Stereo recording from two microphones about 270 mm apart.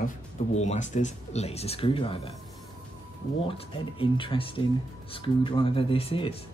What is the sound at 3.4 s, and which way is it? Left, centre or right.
Speech, centre.